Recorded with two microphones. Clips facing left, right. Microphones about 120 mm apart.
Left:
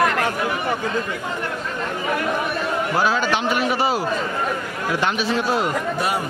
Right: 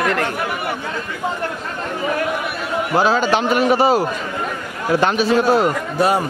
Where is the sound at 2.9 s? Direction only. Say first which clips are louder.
Right 6 dB; 35° right (ahead or behind).